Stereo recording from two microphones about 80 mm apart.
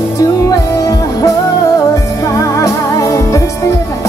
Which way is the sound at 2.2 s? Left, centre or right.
Left.